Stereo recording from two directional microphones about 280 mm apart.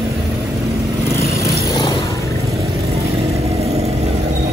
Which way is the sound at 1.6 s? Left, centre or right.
Centre.